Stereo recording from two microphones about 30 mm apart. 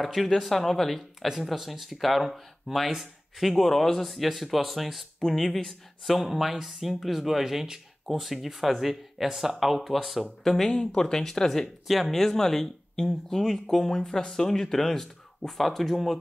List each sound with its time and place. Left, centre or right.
0.0 s speech: centre
1.5 s speech: centre
2.9 s speech: centre
3.4 s speech: centre
5.2 s speech: centre
6.0 s speech: centre
6.5 s speech: centre
10.4 s speech: centre